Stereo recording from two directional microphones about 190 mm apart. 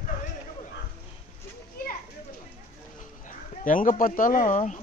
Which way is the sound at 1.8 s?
50° left (ahead or behind).